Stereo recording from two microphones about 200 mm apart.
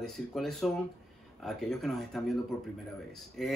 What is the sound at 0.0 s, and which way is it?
Speech, centre (ahead or behind).